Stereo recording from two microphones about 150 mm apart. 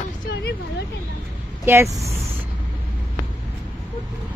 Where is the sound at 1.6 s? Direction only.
20° right (ahead or behind).